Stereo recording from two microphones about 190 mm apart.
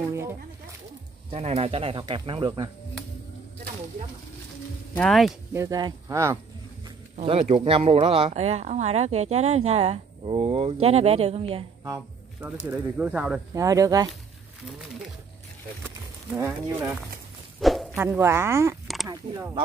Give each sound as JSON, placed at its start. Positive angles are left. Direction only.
{"t": 0.1, "sound": "speech", "side_deg": -15}
{"t": 1.3, "sound": "speech", "side_deg": -30}
{"t": 4.9, "sound": "speech", "side_deg": 0}
{"t": 5.5, "sound": "speech", "side_deg": -15}
{"t": 7.2, "sound": "speech", "side_deg": -35}
{"t": 11.8, "sound": "speech", "side_deg": -15}
{"t": 13.6, "sound": "speech", "side_deg": -15}
{"t": 16.3, "sound": "speech", "side_deg": -15}
{"t": 17.6, "sound": "a sound", "side_deg": 0}
{"t": 17.9, "sound": "speech", "side_deg": -10}